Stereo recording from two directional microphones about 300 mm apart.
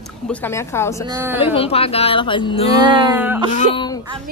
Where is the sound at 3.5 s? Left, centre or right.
Left.